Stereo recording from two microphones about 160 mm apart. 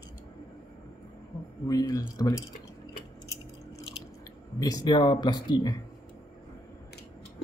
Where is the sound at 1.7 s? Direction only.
20° left (ahead or behind).